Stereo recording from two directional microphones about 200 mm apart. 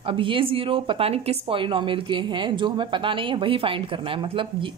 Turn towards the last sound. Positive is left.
turn(degrees=-25)  # may be behind; listen again after turning